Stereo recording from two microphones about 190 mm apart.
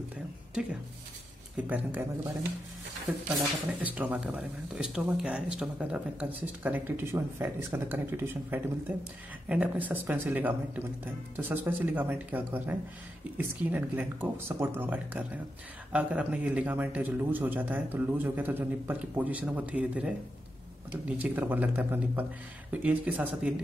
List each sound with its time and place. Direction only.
1.6 s speech: 10° right (ahead or behind)
3.3 s speech: 10° right (ahead or behind)